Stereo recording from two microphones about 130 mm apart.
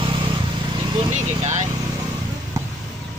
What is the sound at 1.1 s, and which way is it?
Vehicle, 65° right (ahead or behind).